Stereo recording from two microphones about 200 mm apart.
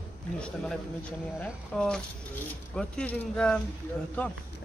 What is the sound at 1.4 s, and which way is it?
Speech, 5° left (ahead or behind).